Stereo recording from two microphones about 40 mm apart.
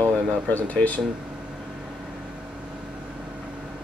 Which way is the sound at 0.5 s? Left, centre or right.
Left.